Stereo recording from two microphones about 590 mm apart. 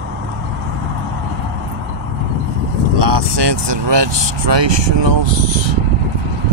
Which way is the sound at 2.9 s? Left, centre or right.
Right.